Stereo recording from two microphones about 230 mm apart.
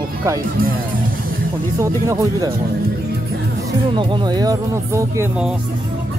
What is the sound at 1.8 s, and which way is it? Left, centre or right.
Speech, centre.